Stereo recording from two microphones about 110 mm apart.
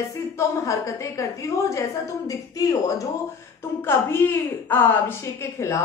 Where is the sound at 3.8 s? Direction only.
20° left (ahead or behind).